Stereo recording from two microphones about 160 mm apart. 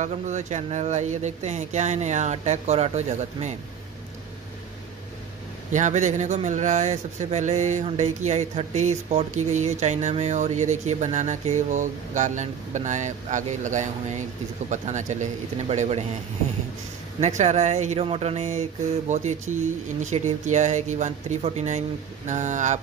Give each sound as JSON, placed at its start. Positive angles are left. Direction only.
{"t": 0.0, "sound": "speech", "side_deg": -50}
{"t": 5.7, "sound": "speech", "side_deg": -50}
{"t": 17.2, "sound": "speech", "side_deg": -45}